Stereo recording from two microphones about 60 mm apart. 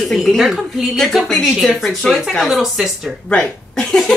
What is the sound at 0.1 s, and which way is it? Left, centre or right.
A woman's voice, centre.